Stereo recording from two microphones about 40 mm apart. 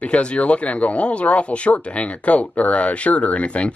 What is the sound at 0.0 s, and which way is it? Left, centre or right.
Speech, left.